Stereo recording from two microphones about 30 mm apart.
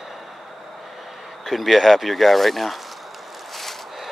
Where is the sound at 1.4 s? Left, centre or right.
Centre.